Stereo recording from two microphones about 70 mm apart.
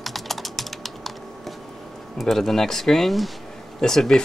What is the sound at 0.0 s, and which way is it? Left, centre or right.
Typing, centre.